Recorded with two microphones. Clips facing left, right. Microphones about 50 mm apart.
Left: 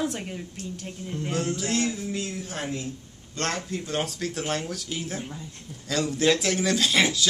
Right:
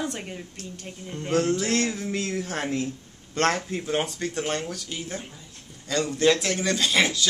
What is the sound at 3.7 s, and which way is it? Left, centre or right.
Speech, centre.